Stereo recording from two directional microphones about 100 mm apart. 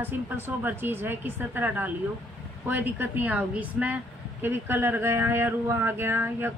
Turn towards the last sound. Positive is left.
turn(degrees=-20)  # may be behind; listen again after turning